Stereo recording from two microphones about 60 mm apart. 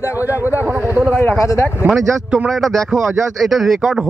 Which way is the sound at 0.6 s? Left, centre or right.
Right.